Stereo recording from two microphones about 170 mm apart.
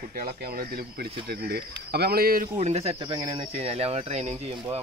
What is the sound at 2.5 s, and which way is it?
Speech, 40° right (ahead or behind).